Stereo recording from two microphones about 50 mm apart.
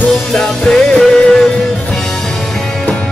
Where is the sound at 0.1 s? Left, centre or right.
Centre.